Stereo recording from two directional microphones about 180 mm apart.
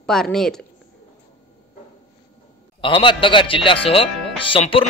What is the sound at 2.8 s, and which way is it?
A man's voice, 30° left (ahead or behind).